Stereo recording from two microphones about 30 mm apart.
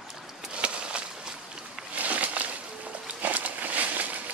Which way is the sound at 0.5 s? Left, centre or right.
Right.